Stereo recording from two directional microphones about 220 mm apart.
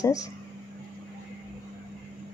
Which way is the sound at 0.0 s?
15° left (ahead or behind).